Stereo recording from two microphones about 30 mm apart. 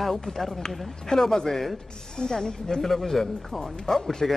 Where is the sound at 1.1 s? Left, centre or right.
Centre.